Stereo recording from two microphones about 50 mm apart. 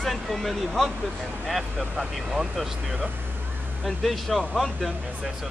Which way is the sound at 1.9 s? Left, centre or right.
Centre.